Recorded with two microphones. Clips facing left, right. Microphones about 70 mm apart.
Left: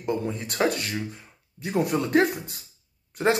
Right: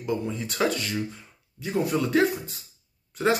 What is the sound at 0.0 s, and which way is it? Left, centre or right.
Speech, left.